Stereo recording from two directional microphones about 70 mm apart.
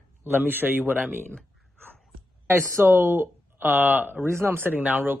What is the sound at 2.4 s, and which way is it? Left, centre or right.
Speech, right.